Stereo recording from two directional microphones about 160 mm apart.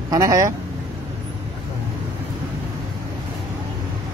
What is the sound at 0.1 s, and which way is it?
Speech, 20° right (ahead or behind).